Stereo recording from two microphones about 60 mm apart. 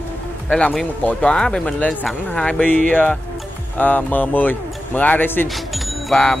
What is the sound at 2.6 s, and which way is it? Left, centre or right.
Speech, left.